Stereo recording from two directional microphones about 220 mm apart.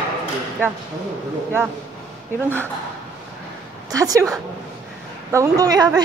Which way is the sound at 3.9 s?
15° right (ahead or behind).